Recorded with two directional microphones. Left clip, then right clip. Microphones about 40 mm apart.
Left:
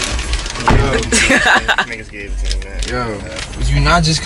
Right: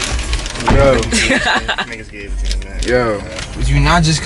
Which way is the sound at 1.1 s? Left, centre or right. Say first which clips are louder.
Left 3 dB; centre.